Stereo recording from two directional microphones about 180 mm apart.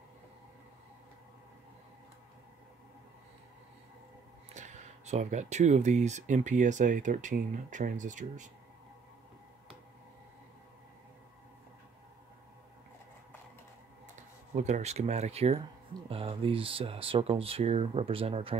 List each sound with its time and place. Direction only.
4.6 s speech: 40° right (ahead or behind)
14.5 s speech: 40° right (ahead or behind)